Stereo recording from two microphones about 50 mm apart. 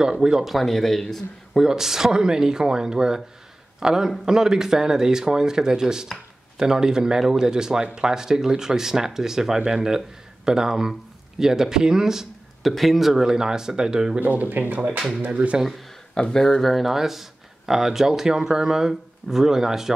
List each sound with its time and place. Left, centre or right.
0.0 s speech: centre
0.6 s a man's voice: centre
1.6 s speech: centre
12.6 s speech: centre
14.2 s speech: right
16.2 s speech: centre